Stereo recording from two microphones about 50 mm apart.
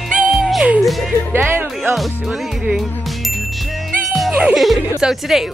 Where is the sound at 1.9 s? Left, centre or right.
Centre.